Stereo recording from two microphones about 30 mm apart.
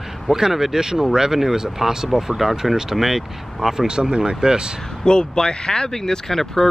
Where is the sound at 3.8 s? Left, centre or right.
Right.